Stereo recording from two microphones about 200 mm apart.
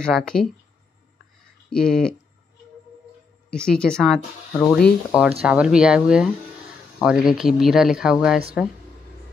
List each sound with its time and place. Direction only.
0.0 s speech: 5° left (ahead or behind)
1.7 s speech: 5° left (ahead or behind)
3.4 s speech: 5° left (ahead or behind)